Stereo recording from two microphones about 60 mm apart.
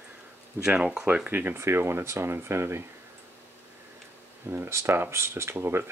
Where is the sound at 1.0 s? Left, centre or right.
Right.